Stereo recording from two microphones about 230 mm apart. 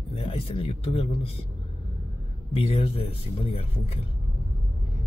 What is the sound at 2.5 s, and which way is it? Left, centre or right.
Speech, left.